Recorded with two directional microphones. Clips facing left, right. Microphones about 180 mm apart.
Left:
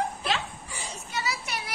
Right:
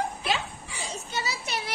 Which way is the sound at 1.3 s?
25° right (ahead or behind).